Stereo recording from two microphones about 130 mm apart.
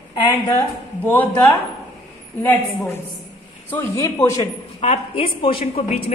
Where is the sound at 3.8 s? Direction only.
25° left (ahead or behind).